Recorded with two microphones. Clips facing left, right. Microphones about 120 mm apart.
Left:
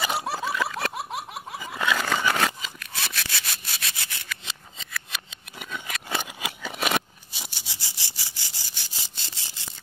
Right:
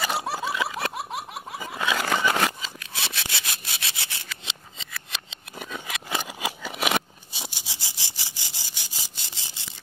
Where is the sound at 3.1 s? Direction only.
25° right (ahead or behind).